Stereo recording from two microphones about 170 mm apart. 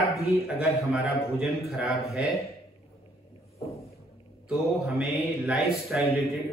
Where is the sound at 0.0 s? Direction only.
60° left (ahead or behind).